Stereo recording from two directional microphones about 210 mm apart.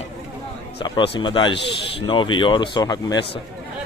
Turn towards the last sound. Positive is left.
turn(degrees=20)  # may be behind; listen again after turning